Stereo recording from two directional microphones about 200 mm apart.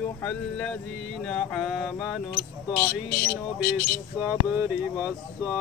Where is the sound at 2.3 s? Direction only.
50° left (ahead or behind).